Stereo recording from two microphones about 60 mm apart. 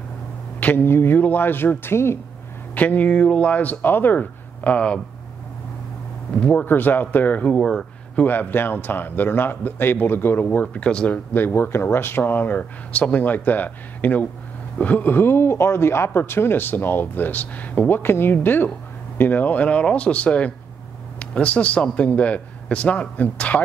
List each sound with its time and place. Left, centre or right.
0.7 s speech: left
2.7 s a man's voice: left
6.6 s speech: left
7.5 s speech: centre
8.2 s speech: left
10.5 s a man's voice: left
11.3 s a man's voice: left